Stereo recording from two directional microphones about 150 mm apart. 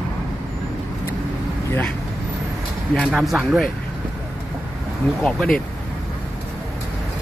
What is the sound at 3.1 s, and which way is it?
Speech, 5° right (ahead or behind).